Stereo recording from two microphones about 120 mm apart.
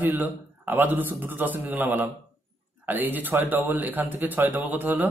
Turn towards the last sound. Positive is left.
turn(degrees=-15)  # may be behind; listen again after turning